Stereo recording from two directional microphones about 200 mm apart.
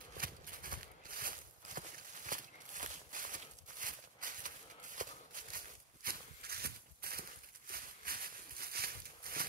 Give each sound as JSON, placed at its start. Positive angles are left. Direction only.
{"t": 0.2, "sound": "a sound", "side_deg": -45}
{"t": 4.9, "sound": "shuffle", "side_deg": -40}
{"t": 6.0, "sound": "walk", "side_deg": -50}